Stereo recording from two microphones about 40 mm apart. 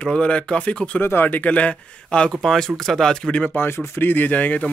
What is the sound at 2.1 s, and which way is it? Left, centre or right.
Speech, left.